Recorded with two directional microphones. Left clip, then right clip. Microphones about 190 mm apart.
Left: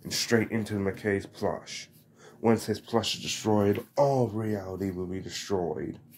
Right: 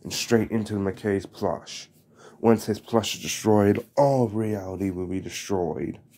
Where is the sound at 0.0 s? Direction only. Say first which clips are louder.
Right 3 dB; 50° right (ahead or behind).